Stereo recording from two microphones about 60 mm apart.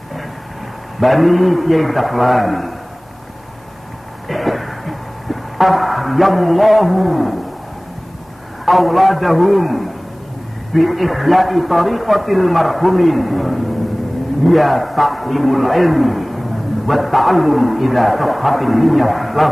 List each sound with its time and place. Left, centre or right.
0.9 s a man's voice: centre
4.3 s a sound: centre
8.6 s a man's voice: centre